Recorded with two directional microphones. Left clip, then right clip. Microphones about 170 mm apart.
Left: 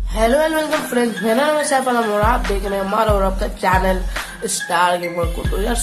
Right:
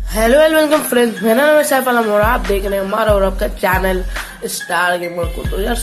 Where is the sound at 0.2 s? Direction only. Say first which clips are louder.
Right 5 dB; 15° right (ahead or behind).